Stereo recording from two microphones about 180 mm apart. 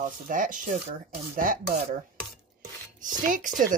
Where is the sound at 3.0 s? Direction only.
45° right (ahead or behind).